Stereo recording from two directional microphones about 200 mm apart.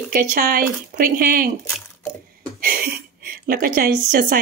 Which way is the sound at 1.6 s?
10° left (ahead or behind).